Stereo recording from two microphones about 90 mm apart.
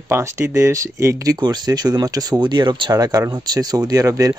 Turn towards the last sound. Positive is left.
turn(degrees=-35)  # may be behind; listen again after turning